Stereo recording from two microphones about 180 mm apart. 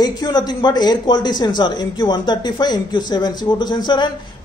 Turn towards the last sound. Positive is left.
turn(degrees=25)  # may be behind; listen again after turning